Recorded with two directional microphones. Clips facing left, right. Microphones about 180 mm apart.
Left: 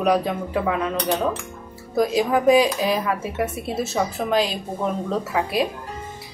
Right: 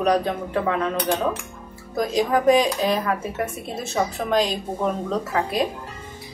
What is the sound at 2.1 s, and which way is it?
A woman's voice, 5° left (ahead or behind).